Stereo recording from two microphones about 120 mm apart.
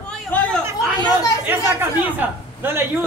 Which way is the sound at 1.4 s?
20° right (ahead or behind).